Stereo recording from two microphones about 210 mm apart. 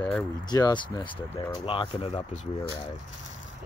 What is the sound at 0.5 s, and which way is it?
Speech, 20° left (ahead or behind).